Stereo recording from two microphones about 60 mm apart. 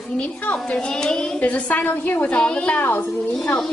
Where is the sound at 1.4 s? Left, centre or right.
Left.